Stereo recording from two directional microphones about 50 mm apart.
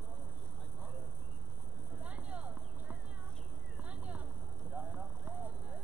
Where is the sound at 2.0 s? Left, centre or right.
Right.